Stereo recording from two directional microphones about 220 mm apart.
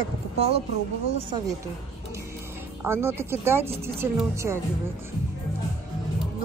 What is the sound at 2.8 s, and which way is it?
Speech, 10° right (ahead or behind).